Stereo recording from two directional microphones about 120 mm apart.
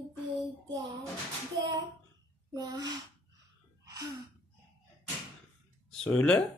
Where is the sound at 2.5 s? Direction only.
35° right (ahead or behind).